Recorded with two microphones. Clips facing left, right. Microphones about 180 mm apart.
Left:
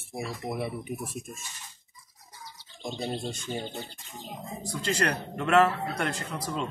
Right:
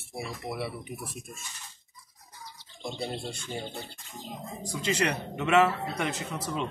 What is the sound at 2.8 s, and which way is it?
Speech, 15° left (ahead or behind).